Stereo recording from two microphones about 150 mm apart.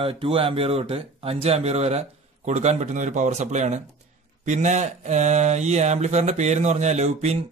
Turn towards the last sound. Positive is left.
turn(degrees=-45)  # may be behind; listen again after turning